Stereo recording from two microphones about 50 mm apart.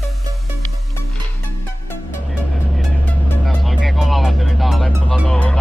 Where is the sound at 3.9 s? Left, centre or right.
Centre.